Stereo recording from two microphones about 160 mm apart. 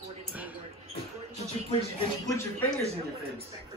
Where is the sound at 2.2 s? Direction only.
15° left (ahead or behind).